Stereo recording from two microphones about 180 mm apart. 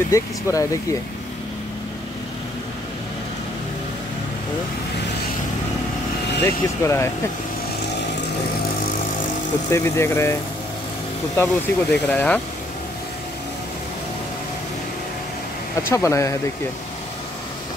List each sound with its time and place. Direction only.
0.1 s speech: 15° left (ahead or behind)
6.4 s speech: 15° left (ahead or behind)
9.7 s speech: 15° left (ahead or behind)
11.3 s speech: 10° left (ahead or behind)
15.9 s speech: 15° left (ahead or behind)